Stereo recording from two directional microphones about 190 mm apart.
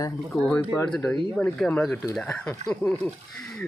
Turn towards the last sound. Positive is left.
turn(degrees=5)  # may be behind; listen again after turning